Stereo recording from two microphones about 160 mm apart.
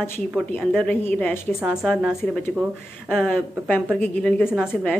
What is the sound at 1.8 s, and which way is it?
Speech, 5° right (ahead or behind).